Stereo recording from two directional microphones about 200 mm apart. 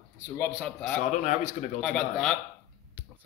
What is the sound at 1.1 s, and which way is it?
Speech, 35° left (ahead or behind).